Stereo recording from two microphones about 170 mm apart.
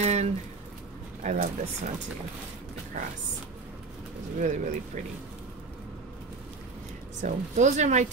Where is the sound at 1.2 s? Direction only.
45° right (ahead or behind).